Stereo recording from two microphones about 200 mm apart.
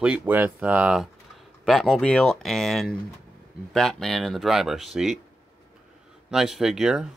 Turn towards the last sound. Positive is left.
turn(degrees=0)  # may be behind; listen again after turning